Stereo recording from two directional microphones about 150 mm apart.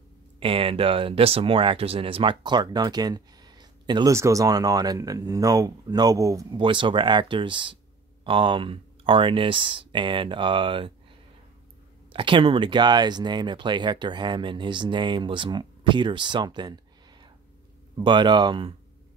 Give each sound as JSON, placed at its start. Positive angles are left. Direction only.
{"t": 0.4, "sound": "speech", "side_deg": -40}
{"t": 6.6, "sound": "speech", "side_deg": -35}
{"t": 12.1, "sound": "speech", "side_deg": -35}